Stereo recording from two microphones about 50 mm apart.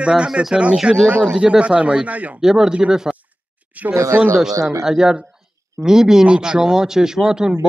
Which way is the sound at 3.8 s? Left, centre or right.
Right.